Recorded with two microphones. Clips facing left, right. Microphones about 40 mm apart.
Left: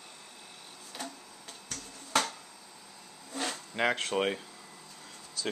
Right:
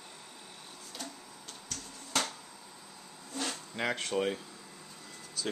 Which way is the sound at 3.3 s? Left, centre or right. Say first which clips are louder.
Left 3 dB; left.